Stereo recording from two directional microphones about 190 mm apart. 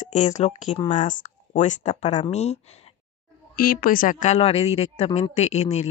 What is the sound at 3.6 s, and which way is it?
Speech, 50° left (ahead or behind).